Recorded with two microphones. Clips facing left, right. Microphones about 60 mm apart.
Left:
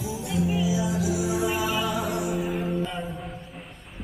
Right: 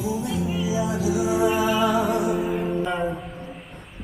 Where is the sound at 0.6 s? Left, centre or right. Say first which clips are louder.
Right 2 dB; right.